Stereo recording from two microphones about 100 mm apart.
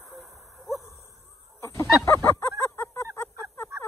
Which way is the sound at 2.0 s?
25° left (ahead or behind).